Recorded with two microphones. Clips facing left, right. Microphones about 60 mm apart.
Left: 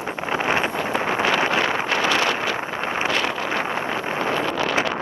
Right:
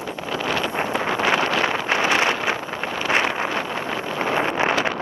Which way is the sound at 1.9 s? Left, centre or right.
Right.